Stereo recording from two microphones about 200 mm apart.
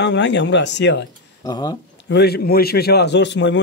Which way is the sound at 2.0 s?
55° left (ahead or behind).